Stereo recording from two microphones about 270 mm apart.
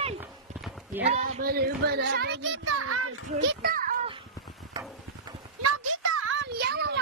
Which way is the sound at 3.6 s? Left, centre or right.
Right.